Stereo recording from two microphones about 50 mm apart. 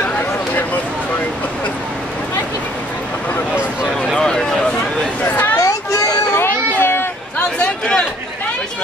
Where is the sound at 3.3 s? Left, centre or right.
Left.